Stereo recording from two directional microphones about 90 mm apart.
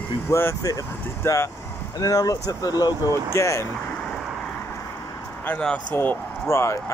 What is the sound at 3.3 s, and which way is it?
Speech, 35° left (ahead or behind).